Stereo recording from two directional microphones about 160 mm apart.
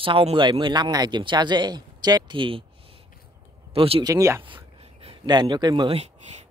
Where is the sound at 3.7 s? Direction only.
35° right (ahead or behind).